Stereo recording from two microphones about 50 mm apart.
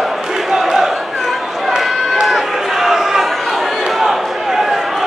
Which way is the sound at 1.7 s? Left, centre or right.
Centre.